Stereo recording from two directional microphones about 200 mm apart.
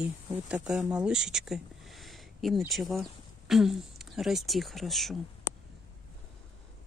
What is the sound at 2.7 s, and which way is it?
Speech, centre (ahead or behind).